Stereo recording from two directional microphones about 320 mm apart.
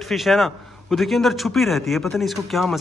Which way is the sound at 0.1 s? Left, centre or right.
Centre.